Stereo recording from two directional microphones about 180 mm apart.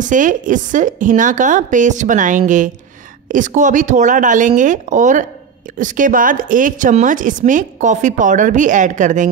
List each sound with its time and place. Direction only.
0.0 s a woman's voice: 45° right (ahead or behind)